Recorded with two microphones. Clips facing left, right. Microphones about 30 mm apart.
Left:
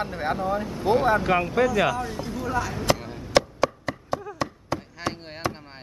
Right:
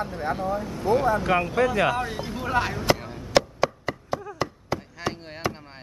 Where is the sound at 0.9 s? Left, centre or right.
Left.